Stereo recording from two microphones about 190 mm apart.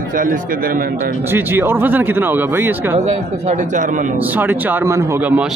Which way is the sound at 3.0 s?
40° right (ahead or behind).